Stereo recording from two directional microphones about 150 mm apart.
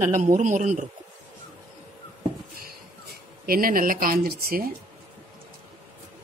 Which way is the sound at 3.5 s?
70° right (ahead or behind).